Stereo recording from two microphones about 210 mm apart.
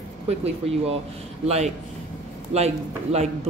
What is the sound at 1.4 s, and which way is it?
Speech, 30° right (ahead or behind).